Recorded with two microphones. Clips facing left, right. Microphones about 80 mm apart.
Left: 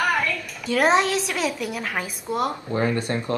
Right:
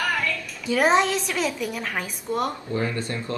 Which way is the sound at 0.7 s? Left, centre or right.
Centre.